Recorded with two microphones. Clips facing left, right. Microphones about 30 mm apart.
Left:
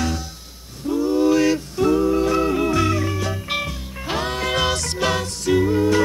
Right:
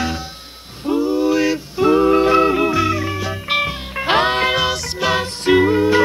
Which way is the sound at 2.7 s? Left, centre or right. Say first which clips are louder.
Right 2 dB; centre.